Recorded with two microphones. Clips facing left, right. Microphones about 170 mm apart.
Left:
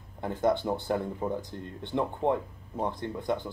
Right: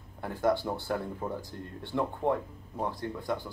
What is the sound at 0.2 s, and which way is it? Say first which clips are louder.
Speech: left 1 dB; 20° left (ahead or behind).